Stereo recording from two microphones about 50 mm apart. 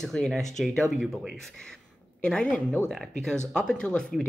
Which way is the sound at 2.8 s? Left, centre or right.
Centre.